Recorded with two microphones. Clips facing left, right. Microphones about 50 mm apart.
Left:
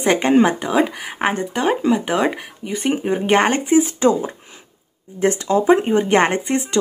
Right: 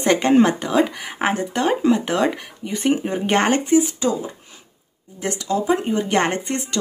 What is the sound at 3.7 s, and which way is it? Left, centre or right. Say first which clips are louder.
Speech: left 3 dB; left.